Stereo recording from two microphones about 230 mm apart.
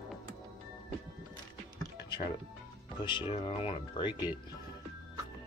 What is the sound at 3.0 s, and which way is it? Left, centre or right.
Speech, left.